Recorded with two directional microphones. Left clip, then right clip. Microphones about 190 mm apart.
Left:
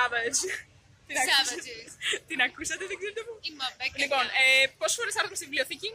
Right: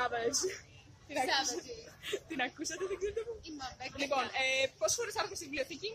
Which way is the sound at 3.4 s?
35° right (ahead or behind).